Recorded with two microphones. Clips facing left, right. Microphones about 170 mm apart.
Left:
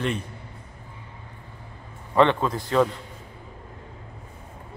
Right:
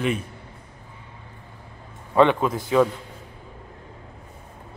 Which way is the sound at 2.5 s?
Centre (ahead or behind).